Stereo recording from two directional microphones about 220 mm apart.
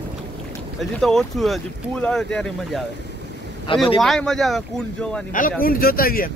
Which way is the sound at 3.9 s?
Centre (ahead or behind).